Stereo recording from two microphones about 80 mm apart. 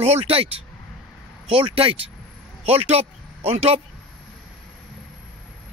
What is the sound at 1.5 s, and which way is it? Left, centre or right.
Speech, right.